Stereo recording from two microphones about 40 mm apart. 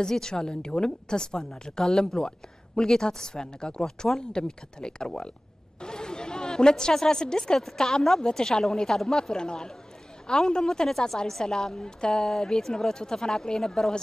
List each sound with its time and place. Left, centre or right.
0.0 s a woman's voice: centre
5.8 s a sound: centre
7.6 s a woman's voice: centre